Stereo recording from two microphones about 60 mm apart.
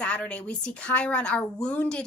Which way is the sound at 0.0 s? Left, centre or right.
Centre.